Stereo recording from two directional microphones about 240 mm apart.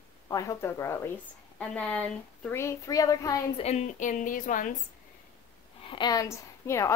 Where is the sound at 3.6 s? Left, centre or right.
Left.